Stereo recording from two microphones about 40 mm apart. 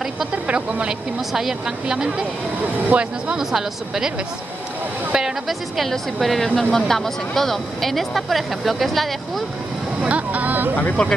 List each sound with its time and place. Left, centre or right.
0.5 s speech: right
2.9 s speech: right
3.3 s speech: centre
5.5 s speech: centre
10.0 s speech: right
11.0 s speech: left